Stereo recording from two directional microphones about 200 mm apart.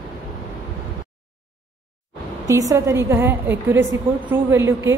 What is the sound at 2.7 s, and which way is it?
A woman's voice, 15° right (ahead or behind).